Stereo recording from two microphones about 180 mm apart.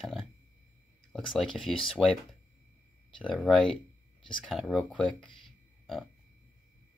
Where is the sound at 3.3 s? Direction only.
Centre (ahead or behind).